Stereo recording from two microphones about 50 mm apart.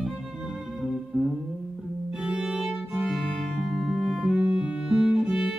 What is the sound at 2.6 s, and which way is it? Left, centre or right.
Music, centre.